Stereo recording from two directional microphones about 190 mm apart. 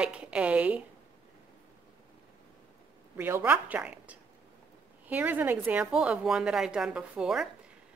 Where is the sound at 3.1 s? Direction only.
10° right (ahead or behind).